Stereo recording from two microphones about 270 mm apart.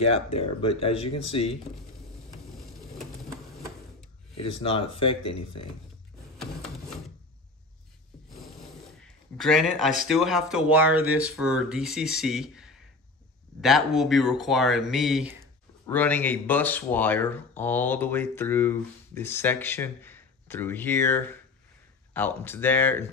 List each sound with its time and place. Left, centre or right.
0.0 s speech: left
4.4 s speech: left
5.2 s speech: left
9.0 s a man's voice: centre